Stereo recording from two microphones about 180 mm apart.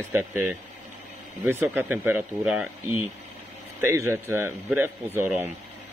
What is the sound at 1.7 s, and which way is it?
Speech, 10° right (ahead or behind).